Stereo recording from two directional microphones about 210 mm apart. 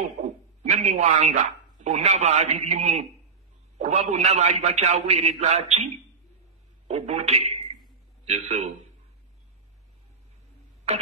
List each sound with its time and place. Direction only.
0.7 s a man's voice: 35° right (ahead or behind)
6.9 s a man's voice: 30° right (ahead or behind)